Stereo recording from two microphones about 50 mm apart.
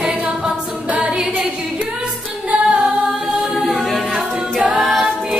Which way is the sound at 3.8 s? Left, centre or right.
Centre.